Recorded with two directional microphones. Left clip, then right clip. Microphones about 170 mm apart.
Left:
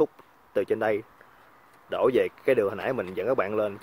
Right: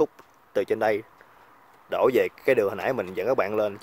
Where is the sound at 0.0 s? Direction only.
10° right (ahead or behind).